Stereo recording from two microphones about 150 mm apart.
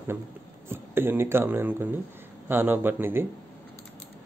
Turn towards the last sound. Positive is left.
turn(degrees=-15)  # may be behind; listen again after turning